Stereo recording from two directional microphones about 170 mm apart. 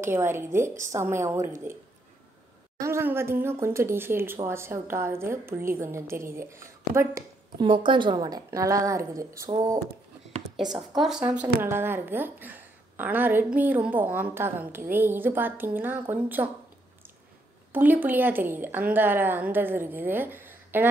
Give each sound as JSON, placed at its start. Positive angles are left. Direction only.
{"t": 0.0, "sound": "a woman's voice", "side_deg": -15}
{"t": 2.8, "sound": "a woman's voice", "side_deg": -15}
{"t": 7.6, "sound": "a woman's voice", "side_deg": -30}
{"t": 10.5, "sound": "a sound", "side_deg": -5}
{"t": 11.0, "sound": "a woman's voice", "side_deg": -5}
{"t": 17.7, "sound": "a woman's voice", "side_deg": -10}